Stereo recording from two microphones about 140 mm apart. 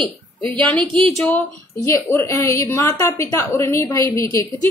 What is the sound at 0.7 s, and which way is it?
Speech, 40° right (ahead or behind).